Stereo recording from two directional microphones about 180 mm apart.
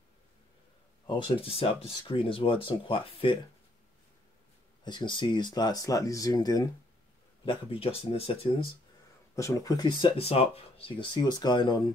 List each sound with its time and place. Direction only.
1.0 s speech: 25° left (ahead or behind)
4.8 s speech: 25° left (ahead or behind)
9.3 s speech: 20° left (ahead or behind)